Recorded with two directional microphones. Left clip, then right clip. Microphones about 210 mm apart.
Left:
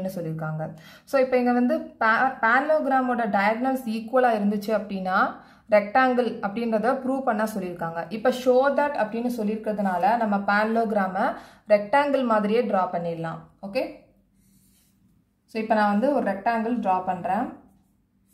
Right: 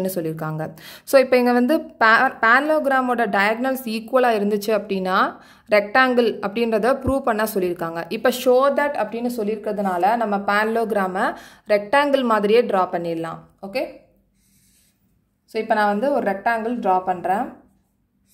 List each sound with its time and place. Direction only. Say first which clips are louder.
0.0 s a woman's voice: right 6 dB; 45° right (ahead or behind)
15.5 s a woman's voice: right 3 dB; 45° right (ahead or behind)